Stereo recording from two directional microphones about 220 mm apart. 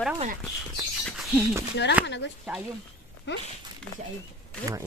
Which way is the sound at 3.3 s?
55° left (ahead or behind).